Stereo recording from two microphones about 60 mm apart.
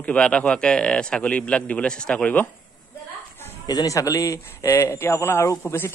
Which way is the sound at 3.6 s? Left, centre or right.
Left.